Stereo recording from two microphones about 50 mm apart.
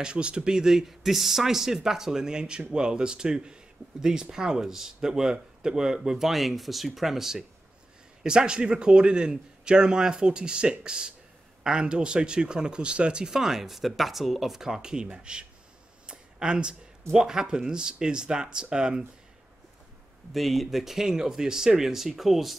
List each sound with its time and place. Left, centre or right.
0.0 s speech: centre
16.1 s a sound: centre
17.1 s speech: centre
20.3 s speech: centre